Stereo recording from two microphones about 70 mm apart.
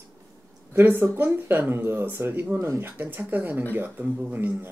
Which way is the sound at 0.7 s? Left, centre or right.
Right.